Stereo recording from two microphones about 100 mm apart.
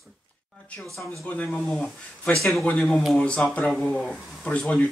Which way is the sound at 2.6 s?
15° left (ahead or behind).